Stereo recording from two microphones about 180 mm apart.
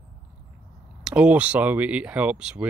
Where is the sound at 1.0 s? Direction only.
5° right (ahead or behind).